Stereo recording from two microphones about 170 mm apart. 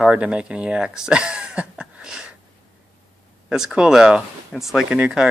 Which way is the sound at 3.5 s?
5° right (ahead or behind).